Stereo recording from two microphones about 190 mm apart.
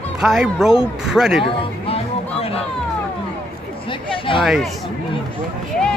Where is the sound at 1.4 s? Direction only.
30° left (ahead or behind).